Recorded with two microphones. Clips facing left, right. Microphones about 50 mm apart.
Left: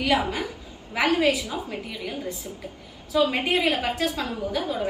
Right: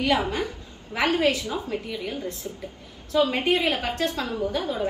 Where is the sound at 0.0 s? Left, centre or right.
Centre.